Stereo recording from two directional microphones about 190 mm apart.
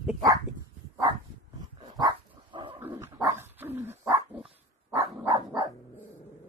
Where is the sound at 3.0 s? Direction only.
10° right (ahead or behind).